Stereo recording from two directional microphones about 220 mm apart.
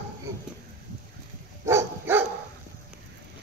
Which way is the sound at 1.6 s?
10° right (ahead or behind).